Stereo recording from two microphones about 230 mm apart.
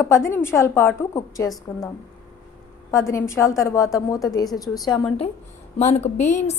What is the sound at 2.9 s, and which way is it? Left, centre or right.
A woman's voice, centre.